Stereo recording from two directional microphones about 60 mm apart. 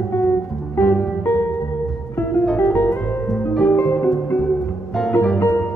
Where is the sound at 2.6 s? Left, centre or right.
Left.